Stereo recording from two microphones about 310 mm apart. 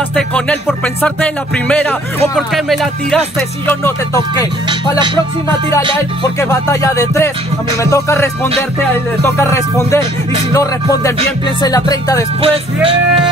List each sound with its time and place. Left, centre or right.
0.1 s music: centre
3.6 s speech: centre
4.6 s music: centre
6.4 s speech: centre
12.4 s music: centre